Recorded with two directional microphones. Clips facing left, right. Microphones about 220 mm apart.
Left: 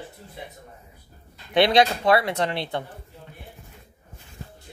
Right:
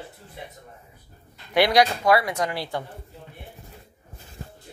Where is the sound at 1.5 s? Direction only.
25° left (ahead or behind).